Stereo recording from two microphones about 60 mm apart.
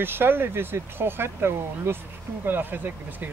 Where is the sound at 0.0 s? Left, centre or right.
Right.